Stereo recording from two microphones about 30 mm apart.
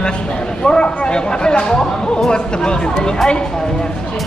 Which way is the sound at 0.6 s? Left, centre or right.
Left.